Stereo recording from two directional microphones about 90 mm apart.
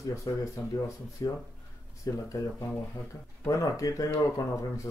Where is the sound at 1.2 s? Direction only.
45° left (ahead or behind).